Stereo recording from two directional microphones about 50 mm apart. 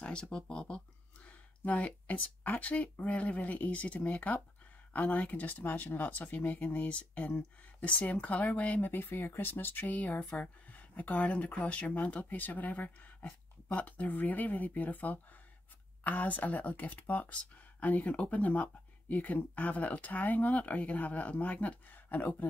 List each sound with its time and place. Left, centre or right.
0.0 s speech: centre
8.8 s speech: left